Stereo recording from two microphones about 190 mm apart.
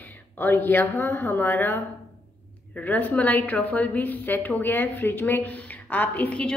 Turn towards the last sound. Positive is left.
turn(degrees=10)  # may be behind; listen again after turning